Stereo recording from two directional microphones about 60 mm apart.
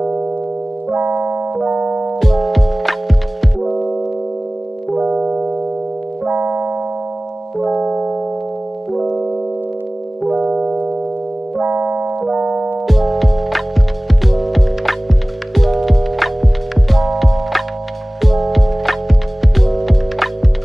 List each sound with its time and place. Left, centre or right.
0.9 s keyboard: right
1.7 s music: right
2.0 s music: centre
4.9 s music: centre
7.5 s music: centre
7.8 s music: centre
8.9 s music: centre
10.5 s music: centre
11.6 s keyboard: right
12.3 s music: centre
12.8 s music: centre